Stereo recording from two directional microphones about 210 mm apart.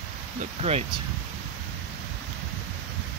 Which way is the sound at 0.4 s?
30° right (ahead or behind).